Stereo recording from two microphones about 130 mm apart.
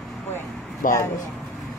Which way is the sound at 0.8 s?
90° left.